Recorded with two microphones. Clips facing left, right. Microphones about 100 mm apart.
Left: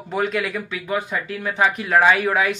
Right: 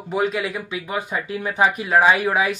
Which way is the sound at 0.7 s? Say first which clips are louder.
Left 1 dB; 15° right (ahead or behind).